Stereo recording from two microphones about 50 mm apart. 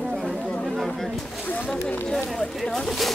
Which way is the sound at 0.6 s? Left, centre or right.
Centre.